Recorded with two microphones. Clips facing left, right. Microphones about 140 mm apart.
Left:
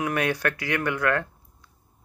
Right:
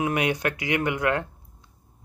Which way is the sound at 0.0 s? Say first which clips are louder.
Right 1 dB; 20° right (ahead or behind).